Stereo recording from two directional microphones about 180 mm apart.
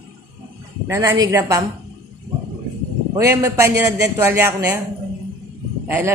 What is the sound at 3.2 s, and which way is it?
A man's voice, 15° right (ahead or behind).